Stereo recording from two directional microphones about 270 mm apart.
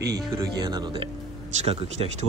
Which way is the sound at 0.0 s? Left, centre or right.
Centre.